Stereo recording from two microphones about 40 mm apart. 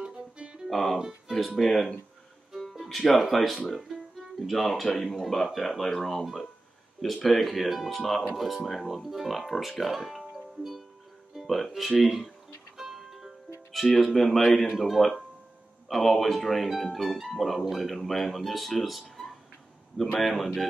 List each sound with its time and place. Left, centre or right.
0.0 s music: right
0.7 s speech: centre
0.9 s speech: centre
1.4 s speech: centre
2.7 s music: centre
3.1 s speech: centre
7.2 s speech: centre
12.7 s music: centre
14.9 s speech: centre